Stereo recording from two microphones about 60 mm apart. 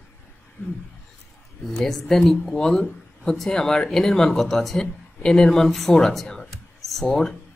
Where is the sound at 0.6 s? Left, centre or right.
Left.